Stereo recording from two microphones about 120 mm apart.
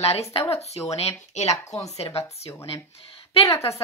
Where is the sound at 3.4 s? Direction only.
25° left (ahead or behind).